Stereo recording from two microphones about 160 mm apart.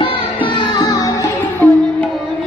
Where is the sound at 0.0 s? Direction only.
30° left (ahead or behind).